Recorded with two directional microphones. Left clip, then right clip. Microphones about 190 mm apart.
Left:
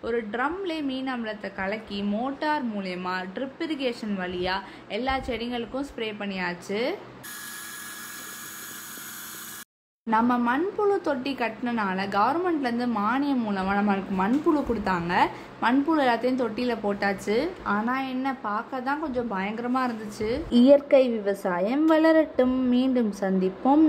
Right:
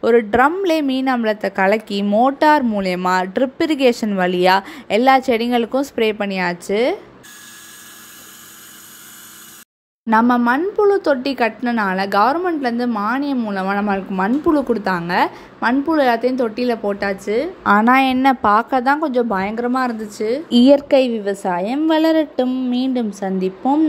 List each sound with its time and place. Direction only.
0.0 s a woman's voice: 50° right (ahead or behind)
10.0 s speech: 35° right (ahead or behind); by 17.5 s 15° right (ahead or behind)
17.6 s speech: 50° right (ahead or behind); by 23.7 s 20° right (ahead or behind)